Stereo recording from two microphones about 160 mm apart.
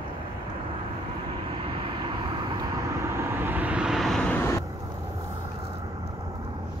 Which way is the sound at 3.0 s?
15° right (ahead or behind).